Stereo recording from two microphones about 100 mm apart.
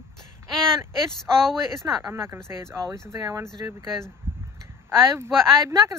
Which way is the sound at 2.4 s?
30° right (ahead or behind).